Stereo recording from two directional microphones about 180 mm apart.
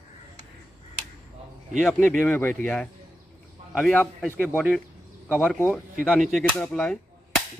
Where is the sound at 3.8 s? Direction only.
5° left (ahead or behind).